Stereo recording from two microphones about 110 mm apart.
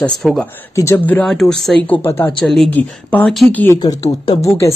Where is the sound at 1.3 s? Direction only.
5° left (ahead or behind); by 2.3 s 20° left (ahead or behind).